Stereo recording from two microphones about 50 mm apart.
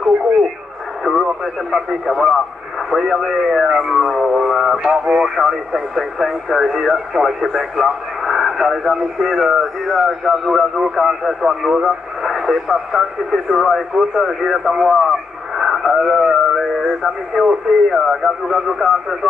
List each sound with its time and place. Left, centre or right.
1.1 s radio: centre
1.4 s speech: centre
4.5 s synthetic singing: centre
5.0 s speech: centre
5.4 s speech: centre